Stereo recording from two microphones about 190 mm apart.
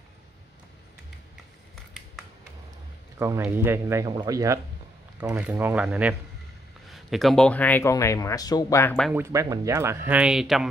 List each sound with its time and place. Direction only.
3.2 s speech: 15° right (ahead or behind); by 8.9 s 15° left (ahead or behind)
9.1 s speech: 15° right (ahead or behind)